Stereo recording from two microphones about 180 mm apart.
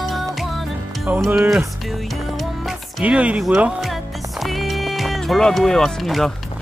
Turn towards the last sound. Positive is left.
turn(degrees=0)  # may be behind; listen again after turning